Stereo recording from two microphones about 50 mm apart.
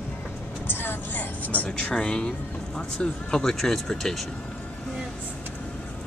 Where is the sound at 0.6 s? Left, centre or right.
Left.